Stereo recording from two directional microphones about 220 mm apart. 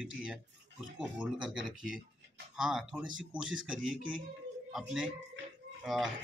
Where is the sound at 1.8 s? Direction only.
40° right (ahead or behind).